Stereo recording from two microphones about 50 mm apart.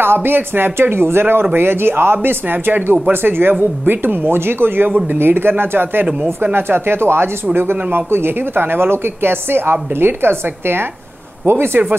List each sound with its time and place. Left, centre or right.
0.0 s a woman's voice: right
4.8 s a woman's voice: right